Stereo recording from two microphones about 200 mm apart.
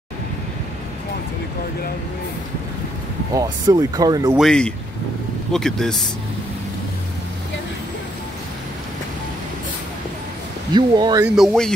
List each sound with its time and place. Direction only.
3.3 s speech: 20° right (ahead or behind)
4.4 s speech: 5° left (ahead or behind)
10.7 s speech: 20° right (ahead or behind)
11.3 s speech: centre (ahead or behind)